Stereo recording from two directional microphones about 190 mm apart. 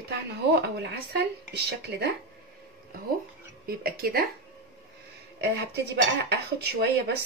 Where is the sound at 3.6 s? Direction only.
50° right (ahead or behind).